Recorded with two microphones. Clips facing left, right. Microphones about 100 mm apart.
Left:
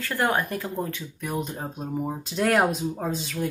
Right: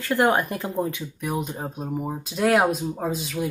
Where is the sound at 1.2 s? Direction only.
5° right (ahead or behind).